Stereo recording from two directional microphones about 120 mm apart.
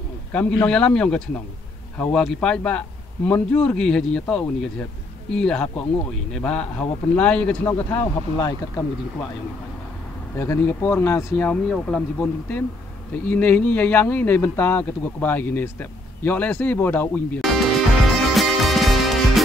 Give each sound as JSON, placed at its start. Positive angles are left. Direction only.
{"t": 0.3, "sound": "speech", "side_deg": 10}
{"t": 8.4, "sound": "speech", "side_deg": 35}
{"t": 10.3, "sound": "speech", "side_deg": 20}
{"t": 11.4, "sound": "speech", "side_deg": 10}
{"t": 17.4, "sound": "music", "side_deg": 0}